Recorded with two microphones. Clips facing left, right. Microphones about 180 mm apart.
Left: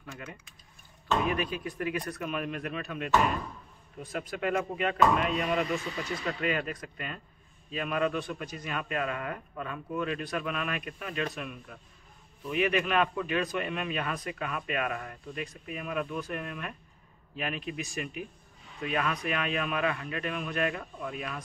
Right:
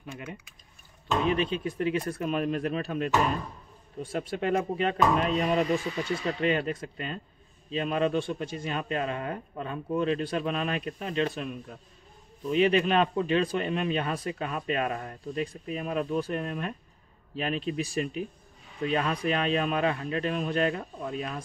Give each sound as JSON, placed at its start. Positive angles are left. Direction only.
{"t": 0.0, "sound": "a man's voice", "side_deg": -20}